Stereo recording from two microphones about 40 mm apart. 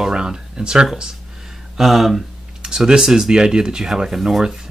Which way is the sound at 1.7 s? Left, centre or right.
Centre.